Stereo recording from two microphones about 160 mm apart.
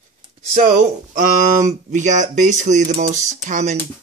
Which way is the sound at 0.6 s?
50° right (ahead or behind).